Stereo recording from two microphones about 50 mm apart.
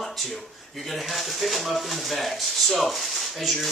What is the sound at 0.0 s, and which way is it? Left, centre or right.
Speech, centre.